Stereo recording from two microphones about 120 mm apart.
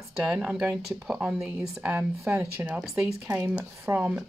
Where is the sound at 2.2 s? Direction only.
20° right (ahead or behind).